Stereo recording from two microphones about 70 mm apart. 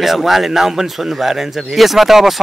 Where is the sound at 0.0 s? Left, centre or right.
Centre.